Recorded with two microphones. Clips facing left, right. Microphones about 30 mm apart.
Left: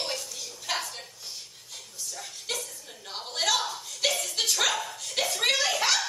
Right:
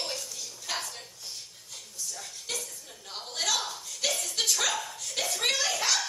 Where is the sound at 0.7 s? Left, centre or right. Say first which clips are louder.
Left 3 dB; centre.